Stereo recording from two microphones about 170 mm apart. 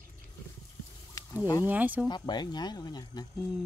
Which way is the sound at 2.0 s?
25° left (ahead or behind).